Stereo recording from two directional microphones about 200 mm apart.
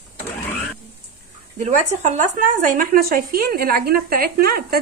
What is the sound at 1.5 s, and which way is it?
Speech, 35° right (ahead or behind).